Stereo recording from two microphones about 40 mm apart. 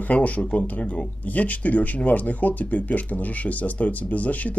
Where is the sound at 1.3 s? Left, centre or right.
Left.